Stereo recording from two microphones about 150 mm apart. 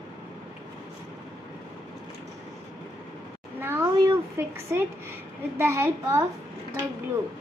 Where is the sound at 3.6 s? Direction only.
15° right (ahead or behind).